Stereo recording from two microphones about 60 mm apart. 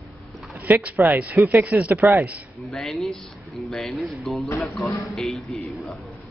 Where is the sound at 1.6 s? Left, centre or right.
Right.